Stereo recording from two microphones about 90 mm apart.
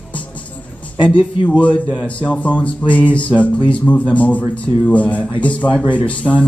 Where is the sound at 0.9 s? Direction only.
65° left (ahead or behind).